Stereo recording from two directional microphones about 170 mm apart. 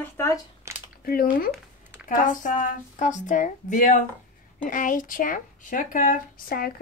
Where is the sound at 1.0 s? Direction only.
60° left (ahead or behind).